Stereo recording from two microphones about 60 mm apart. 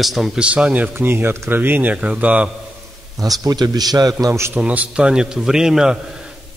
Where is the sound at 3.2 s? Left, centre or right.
Right.